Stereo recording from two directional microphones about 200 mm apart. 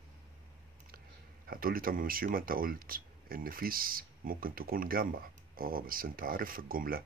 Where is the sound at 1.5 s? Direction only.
45° right (ahead or behind).